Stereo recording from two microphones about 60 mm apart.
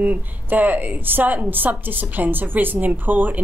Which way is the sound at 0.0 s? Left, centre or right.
Right.